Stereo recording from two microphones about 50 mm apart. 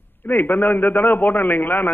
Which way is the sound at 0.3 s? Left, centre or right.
Left.